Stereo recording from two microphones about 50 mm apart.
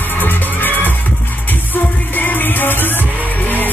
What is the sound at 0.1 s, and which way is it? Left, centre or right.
Music, left.